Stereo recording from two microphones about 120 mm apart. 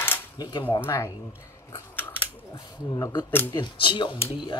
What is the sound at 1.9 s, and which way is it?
Scissors, 15° left (ahead or behind).